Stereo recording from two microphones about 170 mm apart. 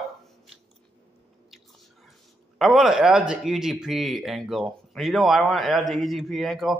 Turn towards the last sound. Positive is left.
turn(degrees=0)  # may be behind; listen again after turning